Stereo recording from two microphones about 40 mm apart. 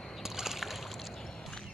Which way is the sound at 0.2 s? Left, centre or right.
Centre.